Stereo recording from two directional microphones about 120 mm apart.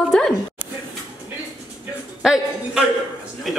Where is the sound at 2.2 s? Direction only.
5° right (ahead or behind).